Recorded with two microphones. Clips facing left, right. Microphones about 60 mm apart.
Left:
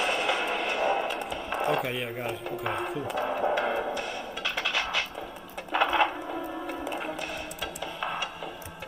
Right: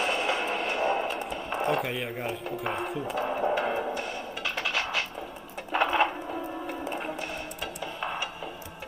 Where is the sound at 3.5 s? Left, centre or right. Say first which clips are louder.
Even; centre.